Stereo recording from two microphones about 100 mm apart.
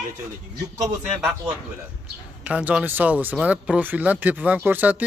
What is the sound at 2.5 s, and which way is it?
Speech, 10° right (ahead or behind).